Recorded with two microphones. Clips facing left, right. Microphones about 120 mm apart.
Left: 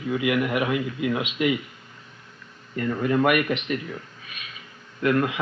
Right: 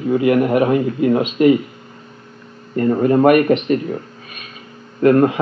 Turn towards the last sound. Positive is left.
turn(degrees=-40)  # may be behind; listen again after turning